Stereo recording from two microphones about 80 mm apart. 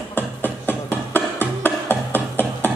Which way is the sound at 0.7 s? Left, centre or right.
Left.